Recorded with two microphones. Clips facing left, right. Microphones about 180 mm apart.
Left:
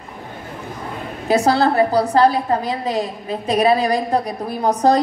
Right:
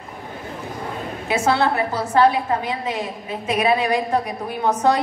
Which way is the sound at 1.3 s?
35° left (ahead or behind).